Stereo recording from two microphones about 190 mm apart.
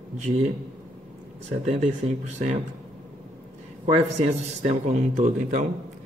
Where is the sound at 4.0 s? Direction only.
35° right (ahead or behind).